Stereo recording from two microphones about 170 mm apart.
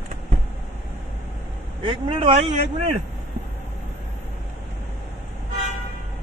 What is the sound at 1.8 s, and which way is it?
A man's voice, 30° right (ahead or behind).